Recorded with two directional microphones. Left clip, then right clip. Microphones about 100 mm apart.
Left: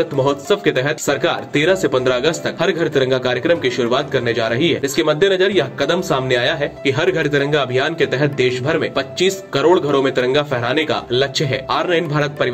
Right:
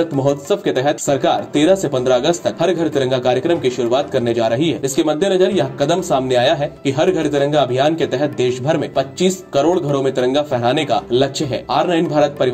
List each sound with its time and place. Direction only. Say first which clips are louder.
0.2 s speech: left 3 dB; 30° right (ahead or behind)